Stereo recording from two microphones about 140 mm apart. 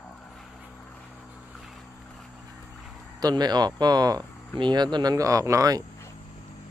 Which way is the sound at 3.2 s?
30° right (ahead or behind).